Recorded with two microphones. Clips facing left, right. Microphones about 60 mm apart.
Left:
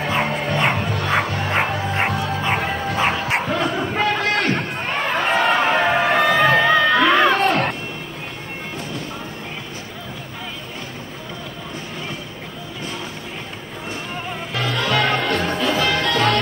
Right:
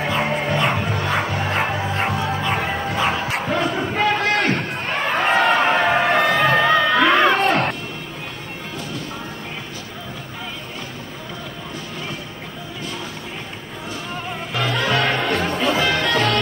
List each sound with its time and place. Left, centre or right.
0.1 s music: centre
2.6 s bow-wow: centre
3.4 s crowd: centre
14.6 s music: centre
15.6 s music: right
16.1 s music: left